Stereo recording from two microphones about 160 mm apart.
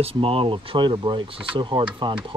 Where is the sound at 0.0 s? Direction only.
35° right (ahead or behind).